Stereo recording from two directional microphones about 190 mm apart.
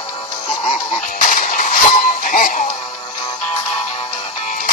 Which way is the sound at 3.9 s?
35° left (ahead or behind).